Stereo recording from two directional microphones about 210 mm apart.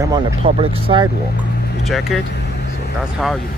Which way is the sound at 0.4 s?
25° right (ahead or behind).